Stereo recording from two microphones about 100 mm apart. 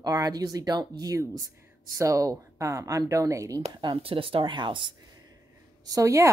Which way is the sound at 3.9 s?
70° right (ahead or behind).